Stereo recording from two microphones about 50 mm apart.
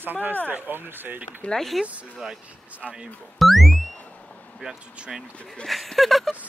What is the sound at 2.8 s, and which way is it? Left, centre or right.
Speech, centre.